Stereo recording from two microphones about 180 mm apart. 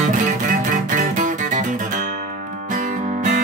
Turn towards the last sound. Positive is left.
turn(degrees=-45)  # may be behind; listen again after turning